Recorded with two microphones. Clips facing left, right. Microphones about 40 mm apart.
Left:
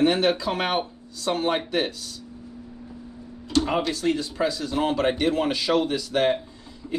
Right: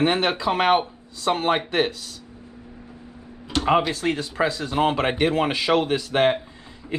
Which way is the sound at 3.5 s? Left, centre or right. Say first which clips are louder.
Right 3 dB; right.